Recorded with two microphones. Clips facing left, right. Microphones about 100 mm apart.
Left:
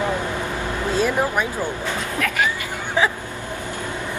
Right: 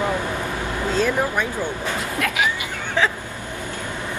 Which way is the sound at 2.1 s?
5° right (ahead or behind).